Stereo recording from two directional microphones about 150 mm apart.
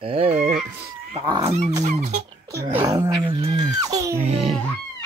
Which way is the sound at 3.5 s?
50° right (ahead or behind).